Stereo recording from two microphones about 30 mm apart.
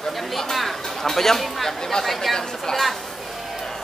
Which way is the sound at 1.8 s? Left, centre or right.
Centre.